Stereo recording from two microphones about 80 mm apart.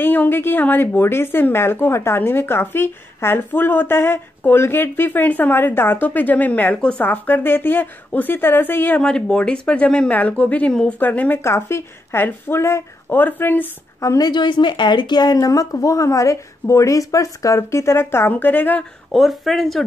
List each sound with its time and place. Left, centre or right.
0.0 s speech: left
9.0 s speech: centre
14.0 s speech: left
14.3 s a woman's voice: left
15.3 s speech: left
18.3 s speech: left
19.1 s speech: centre